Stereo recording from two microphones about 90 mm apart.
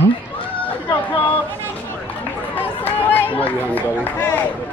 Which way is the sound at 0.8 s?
20° left (ahead or behind).